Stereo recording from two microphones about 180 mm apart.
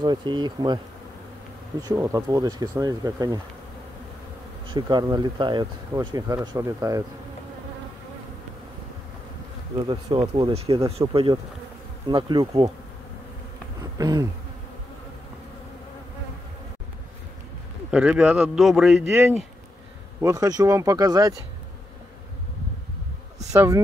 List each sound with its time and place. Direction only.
0.0 s speech: 25° right (ahead or behind)
1.8 s speech: 20° right (ahead or behind)
4.6 s speech: 25° right (ahead or behind)
9.8 s speech: 25° right (ahead or behind)
13.9 s insect: 20° right (ahead or behind)
17.9 s a man's voice: 5° right (ahead or behind)
20.2 s speech: 20° right (ahead or behind)
23.5 s speech: 15° right (ahead or behind)